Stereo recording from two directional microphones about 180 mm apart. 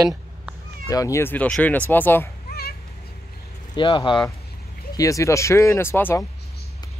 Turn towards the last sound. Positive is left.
turn(degrees=15)  # may be behind; listen again after turning